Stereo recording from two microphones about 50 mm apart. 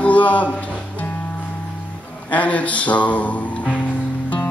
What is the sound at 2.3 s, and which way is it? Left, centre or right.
Music, left.